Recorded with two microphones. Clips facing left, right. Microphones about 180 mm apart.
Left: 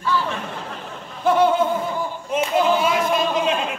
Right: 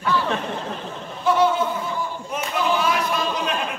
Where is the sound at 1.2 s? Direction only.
50° left (ahead or behind).